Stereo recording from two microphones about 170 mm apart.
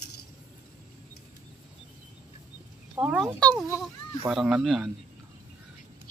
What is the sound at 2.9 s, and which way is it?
Speech, 10° right (ahead or behind).